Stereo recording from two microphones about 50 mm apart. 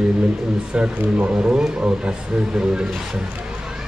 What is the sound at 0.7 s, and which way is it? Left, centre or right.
A man's voice, right.